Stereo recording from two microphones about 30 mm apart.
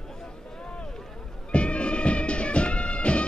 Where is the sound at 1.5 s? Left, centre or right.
Left.